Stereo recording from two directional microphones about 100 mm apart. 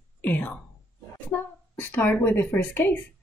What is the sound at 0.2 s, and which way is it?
A woman's voice, 15° left (ahead or behind).